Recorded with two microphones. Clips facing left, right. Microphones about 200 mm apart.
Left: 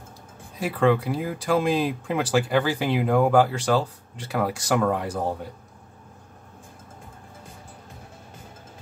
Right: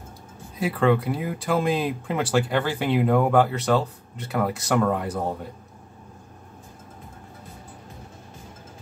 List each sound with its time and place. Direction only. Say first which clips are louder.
0.6 s speech: even; centre (ahead or behind)